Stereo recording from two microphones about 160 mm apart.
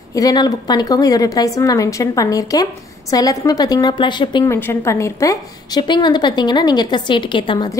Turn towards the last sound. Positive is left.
turn(degrees=25)  # may be behind; listen again after turning